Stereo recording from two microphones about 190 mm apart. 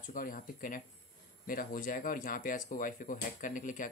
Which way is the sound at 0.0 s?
45° left (ahead or behind).